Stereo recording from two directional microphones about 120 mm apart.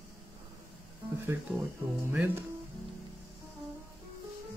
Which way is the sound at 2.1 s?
15° right (ahead or behind).